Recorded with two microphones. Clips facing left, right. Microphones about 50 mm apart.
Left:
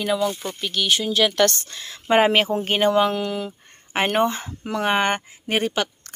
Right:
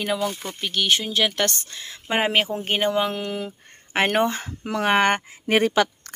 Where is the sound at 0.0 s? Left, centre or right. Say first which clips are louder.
Left 3 dB; right.